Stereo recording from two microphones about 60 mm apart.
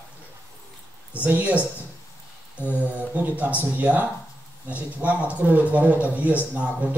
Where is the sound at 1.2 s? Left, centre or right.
Right.